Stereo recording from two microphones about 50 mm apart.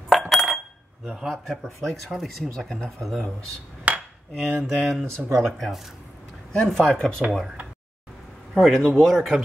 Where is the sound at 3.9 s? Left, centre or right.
Right.